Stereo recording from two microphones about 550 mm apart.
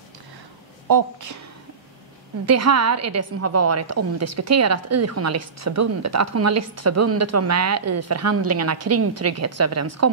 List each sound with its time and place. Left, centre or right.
0.8 s a woman's voice: right
2.4 s a woman's voice: right